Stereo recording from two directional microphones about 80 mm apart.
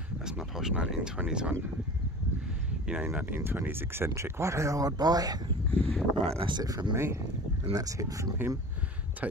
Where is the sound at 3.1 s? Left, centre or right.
Right.